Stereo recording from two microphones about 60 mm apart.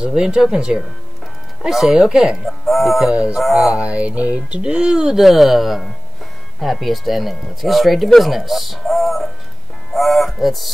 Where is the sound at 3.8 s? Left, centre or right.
Right.